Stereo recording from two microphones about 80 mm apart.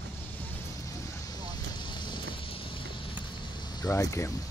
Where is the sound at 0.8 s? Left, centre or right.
Left.